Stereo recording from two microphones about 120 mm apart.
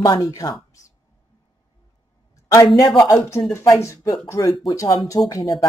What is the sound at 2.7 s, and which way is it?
Speech, 35° left (ahead or behind).